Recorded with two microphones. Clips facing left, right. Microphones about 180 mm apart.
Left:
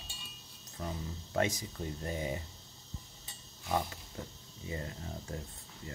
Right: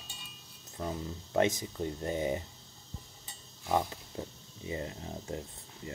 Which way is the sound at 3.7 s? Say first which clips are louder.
Right 3 dB; 25° right (ahead or behind).